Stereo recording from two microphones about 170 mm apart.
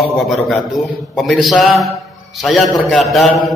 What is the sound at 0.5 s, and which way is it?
A man's voice, centre (ahead or behind).